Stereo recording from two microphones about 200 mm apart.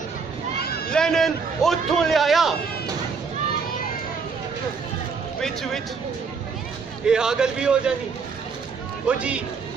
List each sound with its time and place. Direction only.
0.6 s run: 50° left (ahead or behind)
0.9 s a man's voice: centre (ahead or behind)
5.4 s a man's voice: centre (ahead or behind)
7.1 s a man's voice: 5° right (ahead or behind)
9.0 s speech: 5° right (ahead or behind)